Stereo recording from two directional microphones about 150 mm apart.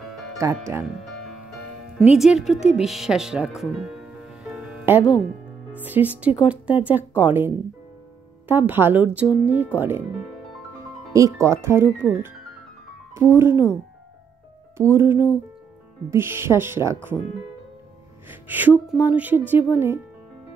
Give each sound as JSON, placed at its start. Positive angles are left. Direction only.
{"t": 0.0, "sound": "music", "side_deg": 0}
{"t": 2.1, "sound": "speech", "side_deg": 0}
{"t": 11.1, "sound": "speech", "side_deg": -20}
{"t": 14.8, "sound": "speech", "side_deg": -15}
{"t": 18.3, "sound": "speech", "side_deg": -10}